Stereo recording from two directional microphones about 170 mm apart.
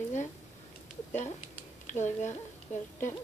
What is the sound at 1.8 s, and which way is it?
Speech, 45° left (ahead or behind).